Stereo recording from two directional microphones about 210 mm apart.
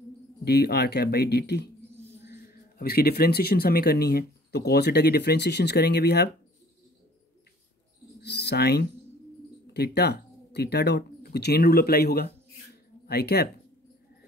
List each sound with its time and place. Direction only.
0.5 s speech: 50° left (ahead or behind)
2.8 s speech: 45° left (ahead or behind)
8.2 s speech: 55° left (ahead or behind)